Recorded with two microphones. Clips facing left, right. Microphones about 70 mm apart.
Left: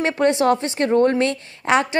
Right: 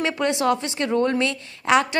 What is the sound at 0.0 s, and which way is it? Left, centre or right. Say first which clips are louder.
A woman's voice: left 4 dB; left.